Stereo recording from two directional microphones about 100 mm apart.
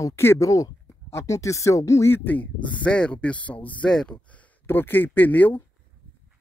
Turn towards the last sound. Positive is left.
turn(degrees=15)  # may be behind; listen again after turning